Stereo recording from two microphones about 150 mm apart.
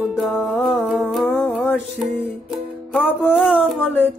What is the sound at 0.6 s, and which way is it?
Music, centre (ahead or behind).